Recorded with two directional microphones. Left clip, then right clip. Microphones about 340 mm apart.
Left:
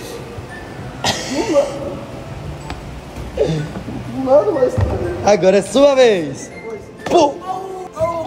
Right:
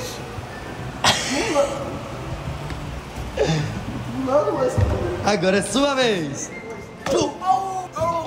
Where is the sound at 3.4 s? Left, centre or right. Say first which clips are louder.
Left 4 dB; centre.